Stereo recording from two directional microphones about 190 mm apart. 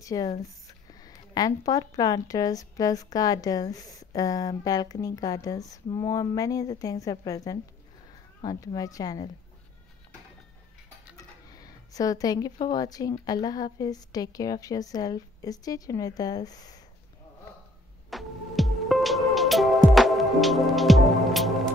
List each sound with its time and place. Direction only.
0.0 s speech: 20° left (ahead or behind)
11.5 s speech: 20° left (ahead or behind)
18.1 s music: centre (ahead or behind)